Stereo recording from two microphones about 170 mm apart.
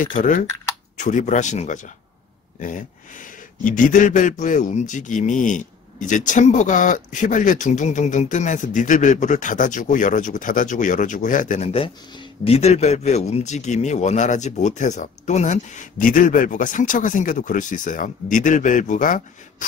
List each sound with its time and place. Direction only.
0.0 s speech: 50° left (ahead or behind)
11.7 s speech: 30° left (ahead or behind); by 19.2 s 50° left (ahead or behind)